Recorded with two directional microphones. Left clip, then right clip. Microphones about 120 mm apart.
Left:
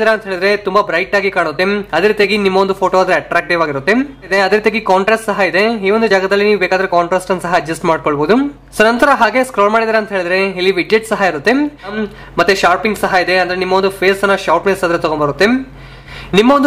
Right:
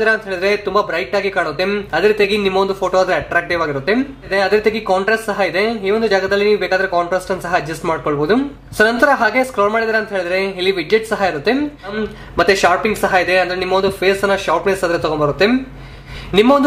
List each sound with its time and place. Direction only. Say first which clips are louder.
0.0 s speech: left 3 dB; 40° left (ahead or behind)
12.4 s speech: left 2 dB; 30° left (ahead or behind)
13.7 s speech: left 3 dB; 45° left (ahead or behind)